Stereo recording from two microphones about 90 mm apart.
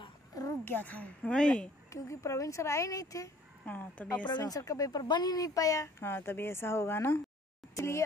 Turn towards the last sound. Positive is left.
turn(degrees=30)  # may be behind; listen again after turning